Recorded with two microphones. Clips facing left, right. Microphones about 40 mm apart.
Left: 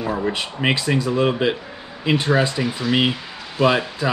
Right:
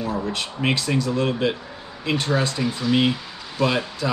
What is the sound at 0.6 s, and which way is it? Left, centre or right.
Speech, left.